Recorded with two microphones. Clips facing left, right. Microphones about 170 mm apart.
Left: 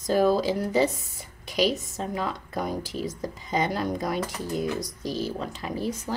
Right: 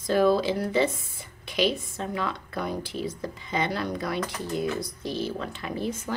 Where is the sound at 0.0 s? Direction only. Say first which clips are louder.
Even; 40° left (ahead or behind).